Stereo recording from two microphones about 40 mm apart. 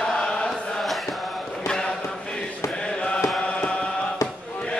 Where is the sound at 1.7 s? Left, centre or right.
Left.